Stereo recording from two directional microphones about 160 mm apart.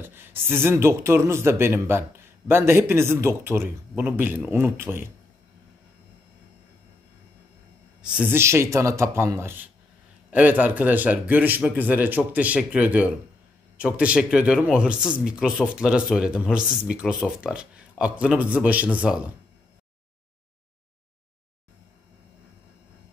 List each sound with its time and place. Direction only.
0.0 s speech: 15° right (ahead or behind)
8.0 s speech: 5° right (ahead or behind)